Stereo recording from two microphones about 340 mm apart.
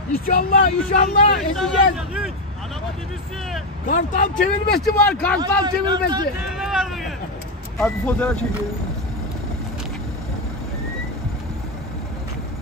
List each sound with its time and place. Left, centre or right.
0.1 s speech: left
1.4 s speech: centre
3.8 s speech: left
4.7 s speech: centre
5.4 s a man's voice: centre
6.4 s a sound: centre
7.7 s speech: centre